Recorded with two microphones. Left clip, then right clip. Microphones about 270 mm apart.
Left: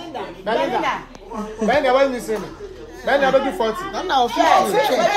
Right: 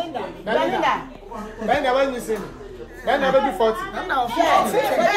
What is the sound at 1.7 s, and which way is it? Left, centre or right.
Speech, left.